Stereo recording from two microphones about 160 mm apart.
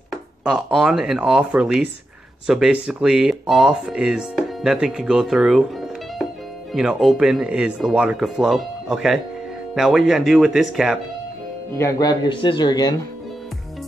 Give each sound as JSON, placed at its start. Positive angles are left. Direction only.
{"t": 0.1, "sound": "speech", "side_deg": 0}
{"t": 6.7, "sound": "speech", "side_deg": -5}
{"t": 11.7, "sound": "a man's voice", "side_deg": 20}